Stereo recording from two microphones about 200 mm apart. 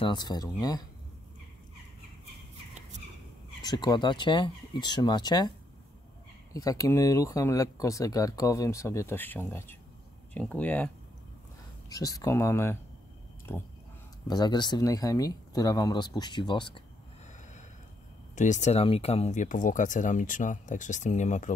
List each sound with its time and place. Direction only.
0.0 s speech: 20° left (ahead or behind)
3.6 s speech: 20° left (ahead or behind)
6.5 s speech: 15° left (ahead or behind)
11.9 s speech: 15° left (ahead or behind)
14.2 s speech: 20° left (ahead or behind)
18.3 s speech: 35° left (ahead or behind)